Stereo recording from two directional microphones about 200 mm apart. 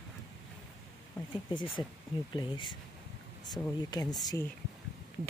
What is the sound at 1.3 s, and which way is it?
Speech, 25° left (ahead or behind).